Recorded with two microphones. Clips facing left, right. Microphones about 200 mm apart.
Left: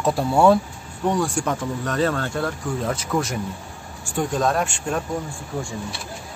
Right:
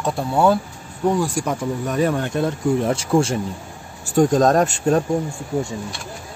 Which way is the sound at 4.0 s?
40° right (ahead or behind).